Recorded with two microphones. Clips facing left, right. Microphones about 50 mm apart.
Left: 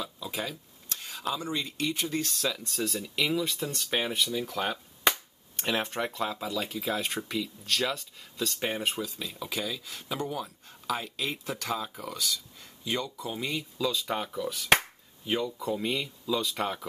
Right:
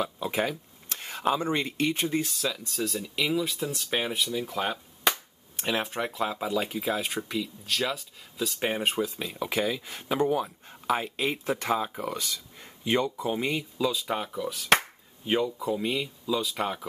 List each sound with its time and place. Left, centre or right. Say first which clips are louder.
0.0 s speech: right 7 dB; right
2.1 s speech: right 2 dB; centre; by 6.8 s right
6.8 s speech: right 2 dB; centre
8.5 s speech: right 4 dB; centre
8.8 s speech: right 4 dB; right
13.9 s speech: right 1 dB; centre
15.2 s speech: right 4 dB; centre
15.6 s speech: right 2 dB; centre